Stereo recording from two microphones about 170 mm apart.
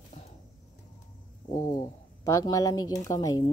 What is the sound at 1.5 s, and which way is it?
Speech, 25° left (ahead or behind).